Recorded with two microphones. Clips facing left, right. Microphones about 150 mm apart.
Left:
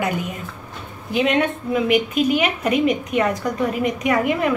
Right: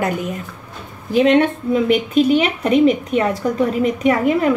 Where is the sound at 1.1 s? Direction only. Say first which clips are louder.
Right 6 dB; 35° right (ahead or behind).